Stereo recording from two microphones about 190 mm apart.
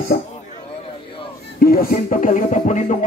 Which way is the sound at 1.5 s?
50° left (ahead or behind).